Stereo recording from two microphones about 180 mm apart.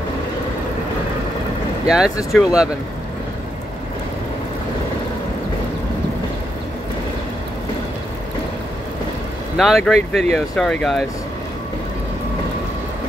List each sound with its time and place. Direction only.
1.9 s speech: 5° right (ahead or behind)
9.6 s speech: centre (ahead or behind)